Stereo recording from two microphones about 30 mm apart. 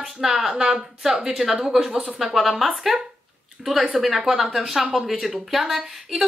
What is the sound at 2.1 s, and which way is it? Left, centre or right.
Speech, centre.